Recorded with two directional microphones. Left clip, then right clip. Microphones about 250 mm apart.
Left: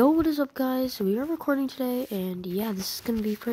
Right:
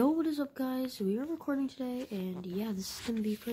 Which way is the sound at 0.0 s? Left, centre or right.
Centre.